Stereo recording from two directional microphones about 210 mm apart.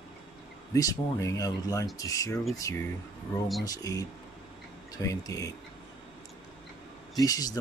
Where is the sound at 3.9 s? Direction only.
15° left (ahead or behind).